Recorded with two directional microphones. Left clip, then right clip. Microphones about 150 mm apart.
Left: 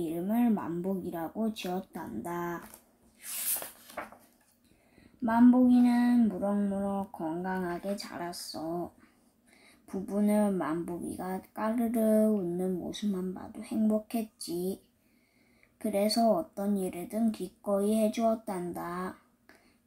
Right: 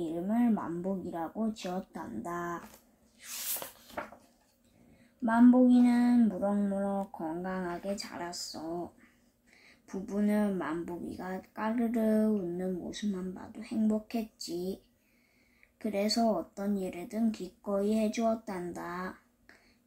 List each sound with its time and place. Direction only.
0.0 s a sound: 20° left (ahead or behind)
3.2 s spray: centre (ahead or behind)
5.2 s speech: 10° left (ahead or behind); by 8.6 s 25° left (ahead or behind)
9.8 s speech: 25° left (ahead or behind)
15.8 s speech: 25° left (ahead or behind)